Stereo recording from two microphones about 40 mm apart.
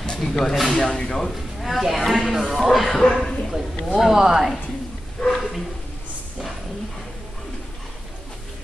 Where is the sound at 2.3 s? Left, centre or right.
Centre.